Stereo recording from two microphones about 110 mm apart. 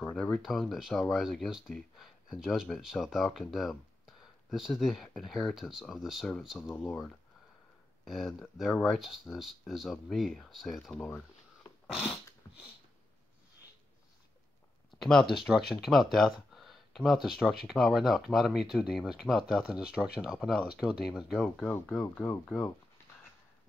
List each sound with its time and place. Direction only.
0.1 s speech: 5° left (ahead or behind)
12.4 s finger snapping: 25° left (ahead or behind)
15.0 s speech: 5° left (ahead or behind)
21.5 s speech: 15° left (ahead or behind)